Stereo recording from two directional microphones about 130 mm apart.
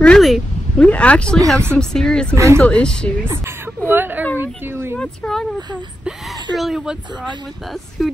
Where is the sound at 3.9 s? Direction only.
15° right (ahead or behind).